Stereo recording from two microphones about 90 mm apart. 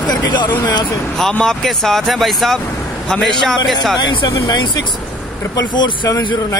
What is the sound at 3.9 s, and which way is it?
Speech, 55° left (ahead or behind).